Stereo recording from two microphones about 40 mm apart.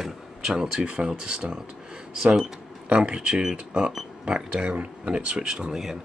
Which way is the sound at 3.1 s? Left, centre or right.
Right.